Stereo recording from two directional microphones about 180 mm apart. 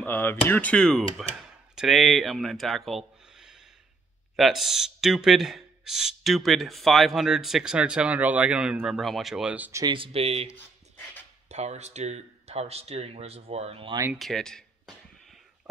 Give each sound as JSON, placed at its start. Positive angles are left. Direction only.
{"t": 0.0, "sound": "speech", "side_deg": 10}
{"t": 9.9, "sound": "speech", "side_deg": -30}
{"t": 14.1, "sound": "speech", "side_deg": 0}